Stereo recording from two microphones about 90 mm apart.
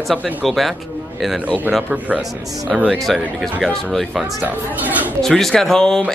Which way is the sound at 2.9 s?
Centre (ahead or behind).